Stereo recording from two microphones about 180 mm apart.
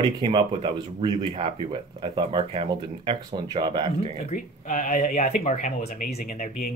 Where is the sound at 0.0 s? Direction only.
25° right (ahead or behind).